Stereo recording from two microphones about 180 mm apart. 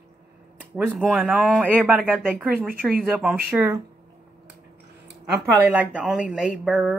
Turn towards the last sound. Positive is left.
turn(degrees=-5)  # may be behind; listen again after turning